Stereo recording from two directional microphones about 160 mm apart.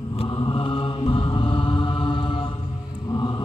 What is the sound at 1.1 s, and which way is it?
Mantra, 35° left (ahead or behind).